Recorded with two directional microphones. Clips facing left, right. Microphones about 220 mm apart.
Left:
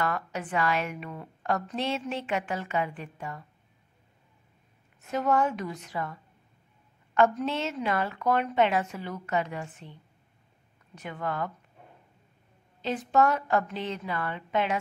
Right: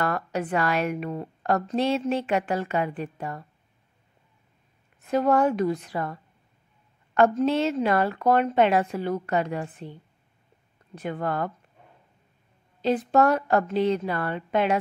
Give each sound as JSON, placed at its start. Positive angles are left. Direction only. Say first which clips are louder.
{"t": 0.0, "sound": "a woman's voice", "louder": "right 4 dB", "side_deg": -35}
{"t": 5.1, "sound": "a woman's voice", "louder": "right 5 dB", "side_deg": -35}
{"t": 5.9, "sound": "a woman's voice", "louder": "right 4 dB", "side_deg": -50}
{"t": 7.2, "sound": "a woman's voice", "louder": "right 5 dB", "side_deg": -35}
{"t": 11.0, "sound": "a woman's voice", "louder": "right 5 dB", "side_deg": -35}
{"t": 12.8, "sound": "a woman's voice", "louder": "right 4 dB", "side_deg": -35}